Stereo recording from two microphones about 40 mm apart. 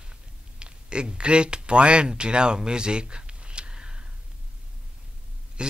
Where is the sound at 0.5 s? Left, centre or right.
Right.